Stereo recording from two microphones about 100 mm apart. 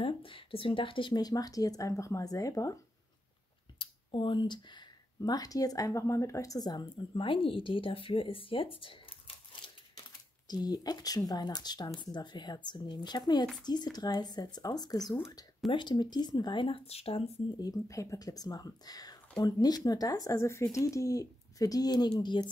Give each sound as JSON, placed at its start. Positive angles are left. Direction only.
{"t": 0.0, "sound": "speech", "side_deg": 60}
{"t": 3.7, "sound": "speech", "side_deg": 55}
{"t": 10.5, "sound": "speech", "side_deg": 40}
{"t": 15.7, "sound": "speech", "side_deg": 50}
{"t": 17.6, "sound": "speech", "side_deg": 35}